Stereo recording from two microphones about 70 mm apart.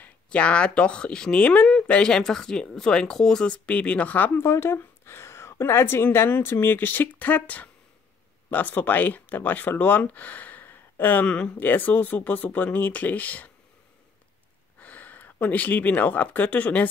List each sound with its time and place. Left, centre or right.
0.0 s speech: centre
4.4 s a woman's voice: left; by 11.5 s centre
11.5 s speech: left
14.8 s speech: left